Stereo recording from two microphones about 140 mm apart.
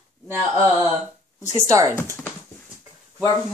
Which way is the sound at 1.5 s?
20° right (ahead or behind).